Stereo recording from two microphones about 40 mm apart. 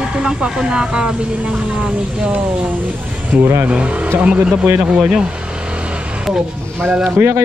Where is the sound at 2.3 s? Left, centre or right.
Right.